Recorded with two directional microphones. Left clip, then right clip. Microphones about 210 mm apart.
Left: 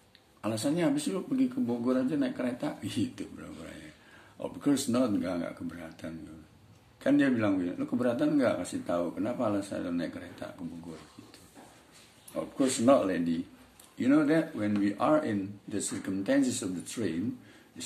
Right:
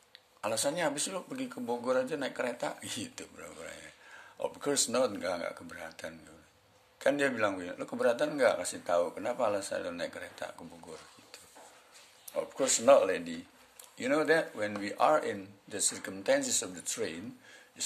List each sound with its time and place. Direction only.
0.4 s speech: 40° right (ahead or behind)
12.4 s speech: 40° right (ahead or behind)